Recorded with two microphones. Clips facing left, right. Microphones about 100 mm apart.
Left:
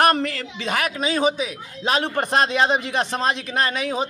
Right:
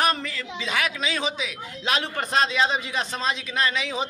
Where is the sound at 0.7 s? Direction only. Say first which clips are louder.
Left 4 dB; 50° left (ahead or behind).